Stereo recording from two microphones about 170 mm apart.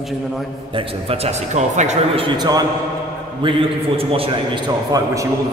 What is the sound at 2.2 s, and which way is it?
A man's voice, 25° right (ahead or behind).